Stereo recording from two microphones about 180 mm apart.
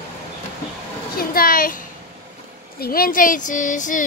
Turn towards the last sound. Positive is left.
turn(degrees=45)  # may be behind; listen again after turning